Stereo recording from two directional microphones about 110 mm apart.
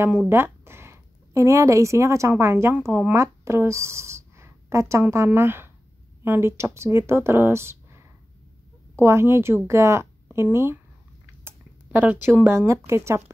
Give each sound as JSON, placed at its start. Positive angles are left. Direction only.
{"t": 0.3, "sound": "speech", "side_deg": -20}
{"t": 3.2, "sound": "a sound", "side_deg": -25}
{"t": 5.1, "sound": "a woman's voice", "side_deg": -20}